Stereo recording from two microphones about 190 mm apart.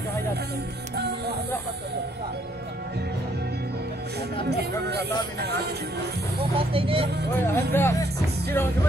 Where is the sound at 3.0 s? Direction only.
60° right (ahead or behind).